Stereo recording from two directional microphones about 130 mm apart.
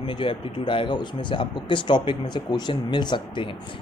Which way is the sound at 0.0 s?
40° left (ahead or behind).